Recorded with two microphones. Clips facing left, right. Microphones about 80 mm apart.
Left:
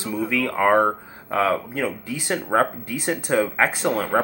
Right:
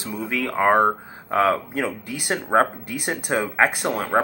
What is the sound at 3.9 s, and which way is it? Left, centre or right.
Speech, right.